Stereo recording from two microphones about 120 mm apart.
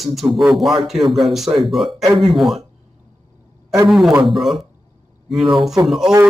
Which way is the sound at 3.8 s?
Centre (ahead or behind).